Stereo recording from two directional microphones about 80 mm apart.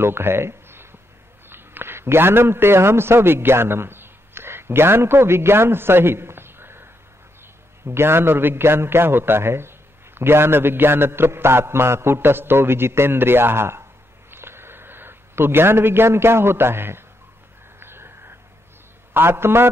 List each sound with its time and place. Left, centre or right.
0.0 s a man's voice: right
14.3 s a sound: right
19.1 s a man's voice: right